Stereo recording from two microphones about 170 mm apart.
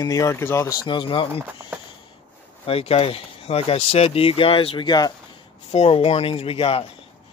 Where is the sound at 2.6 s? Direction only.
35° left (ahead or behind).